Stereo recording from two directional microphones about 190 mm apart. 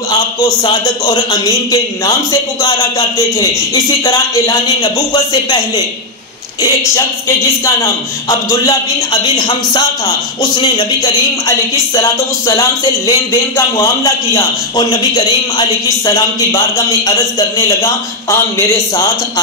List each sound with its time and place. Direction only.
0.4 s a man's voice: 25° left (ahead or behind)
4.8 s a man's voice: 20° left (ahead or behind)
7.6 s a man's voice: 15° left (ahead or behind)